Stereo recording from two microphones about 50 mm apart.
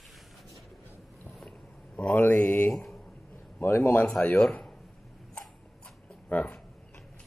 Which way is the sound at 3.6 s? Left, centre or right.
Left.